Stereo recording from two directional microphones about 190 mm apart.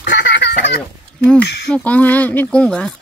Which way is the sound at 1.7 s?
5° left (ahead or behind).